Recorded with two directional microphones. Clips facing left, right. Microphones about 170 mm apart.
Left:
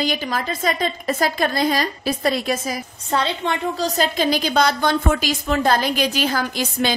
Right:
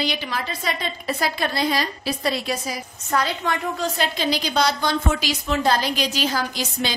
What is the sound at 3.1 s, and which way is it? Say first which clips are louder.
Speech: left 1 dB; 25° left (ahead or behind).